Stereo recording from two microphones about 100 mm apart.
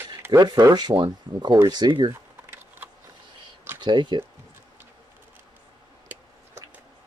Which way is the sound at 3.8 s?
50° right (ahead or behind).